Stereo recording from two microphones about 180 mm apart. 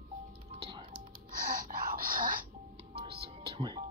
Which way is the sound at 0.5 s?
25° right (ahead or behind).